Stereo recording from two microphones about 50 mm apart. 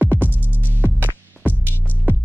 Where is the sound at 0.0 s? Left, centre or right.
Right.